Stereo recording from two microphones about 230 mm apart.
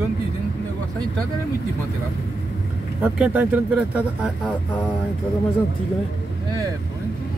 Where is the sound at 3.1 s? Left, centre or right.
Centre.